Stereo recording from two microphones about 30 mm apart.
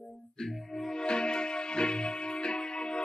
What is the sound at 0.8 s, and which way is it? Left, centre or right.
Music, left.